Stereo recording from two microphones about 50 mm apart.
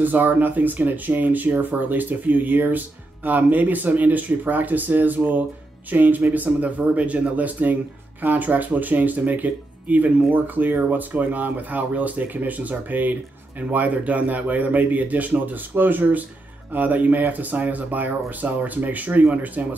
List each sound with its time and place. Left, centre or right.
0.0 s speech: right